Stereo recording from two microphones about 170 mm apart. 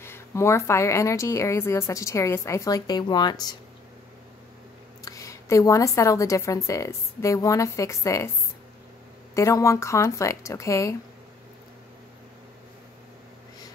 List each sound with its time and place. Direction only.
0.0 s speech: 15° left (ahead or behind)
5.0 s speech: 20° left (ahead or behind)
9.3 s speech: 20° left (ahead or behind)